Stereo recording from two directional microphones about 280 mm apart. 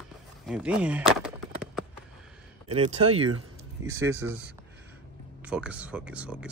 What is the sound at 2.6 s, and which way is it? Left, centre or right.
Speech, right.